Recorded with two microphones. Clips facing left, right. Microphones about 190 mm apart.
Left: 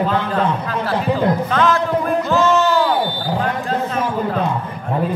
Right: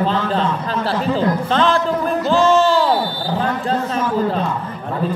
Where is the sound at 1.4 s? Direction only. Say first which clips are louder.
Even; 30° right (ahead or behind).